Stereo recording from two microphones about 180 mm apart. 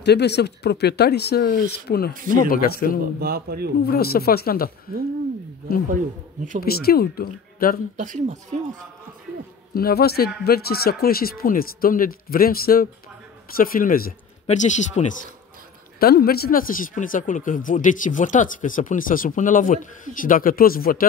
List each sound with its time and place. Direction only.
0.0 s speech: 70° left (ahead or behind)
2.1 s speech: 50° right (ahead or behind)
2.5 s speech: 55° left (ahead or behind)
3.2 s a man's voice: 60° right (ahead or behind)
3.8 s speech: 60° left (ahead or behind)
6.6 s speech: 60° left (ahead or behind)
8.0 s speech: 45° right (ahead or behind)
9.8 s speech: 60° left (ahead or behind)
14.4 s speech: 40° left (ahead or behind)
16.0 s speech: 55° left (ahead or behind)